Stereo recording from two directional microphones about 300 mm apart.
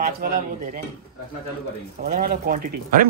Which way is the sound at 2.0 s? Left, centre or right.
Right.